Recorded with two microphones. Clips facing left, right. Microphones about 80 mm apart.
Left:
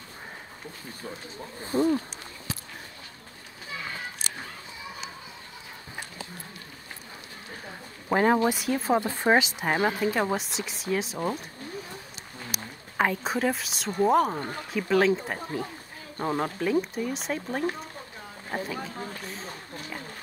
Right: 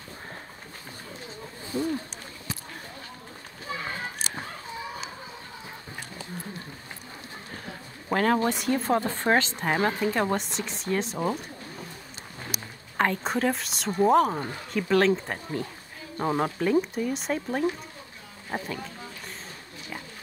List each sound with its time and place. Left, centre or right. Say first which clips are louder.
1.7 s speech: left 5 dB; left
8.1 s speech: left 1 dB; centre
12.9 s speech: right 1 dB; centre
16.2 s speech: right 2 dB; centre
19.2 s a sound: left 3 dB; centre